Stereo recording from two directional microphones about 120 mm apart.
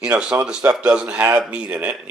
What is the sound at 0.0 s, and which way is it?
Speech, 5° right (ahead or behind).